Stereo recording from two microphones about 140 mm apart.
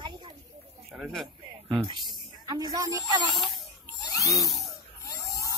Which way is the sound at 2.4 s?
25° right (ahead or behind).